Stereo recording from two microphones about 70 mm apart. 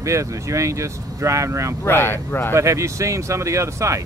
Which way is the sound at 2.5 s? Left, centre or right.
Right.